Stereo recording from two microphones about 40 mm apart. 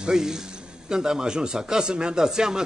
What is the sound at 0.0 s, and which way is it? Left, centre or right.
A man's voice, centre.